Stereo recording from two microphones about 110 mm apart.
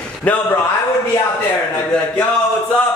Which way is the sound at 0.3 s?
15° left (ahead or behind).